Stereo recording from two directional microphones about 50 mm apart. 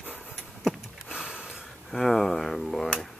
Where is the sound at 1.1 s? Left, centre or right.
Centre.